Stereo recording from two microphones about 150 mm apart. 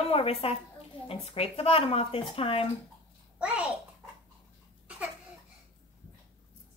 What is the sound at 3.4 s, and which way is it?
Speech, 10° right (ahead or behind).